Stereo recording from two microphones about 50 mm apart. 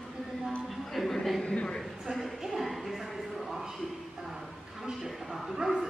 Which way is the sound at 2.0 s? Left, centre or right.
Centre.